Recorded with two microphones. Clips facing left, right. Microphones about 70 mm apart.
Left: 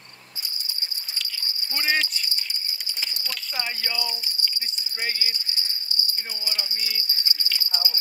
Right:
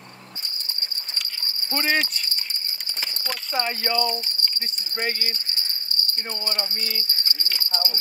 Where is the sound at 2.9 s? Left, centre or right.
Right.